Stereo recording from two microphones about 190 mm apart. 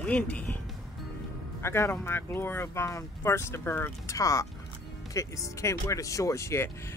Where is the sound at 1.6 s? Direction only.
15° left (ahead or behind).